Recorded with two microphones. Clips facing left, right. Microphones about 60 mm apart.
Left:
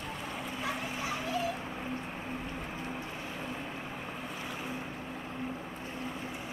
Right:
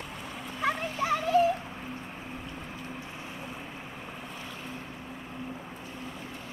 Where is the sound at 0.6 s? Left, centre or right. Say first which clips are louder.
Right 9 dB; right.